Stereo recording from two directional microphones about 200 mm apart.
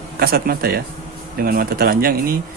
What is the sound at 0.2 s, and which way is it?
Speech, 50° right (ahead or behind).